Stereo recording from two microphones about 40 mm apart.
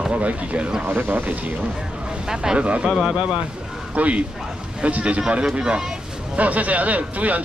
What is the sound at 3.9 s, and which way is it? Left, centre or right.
Speech, right.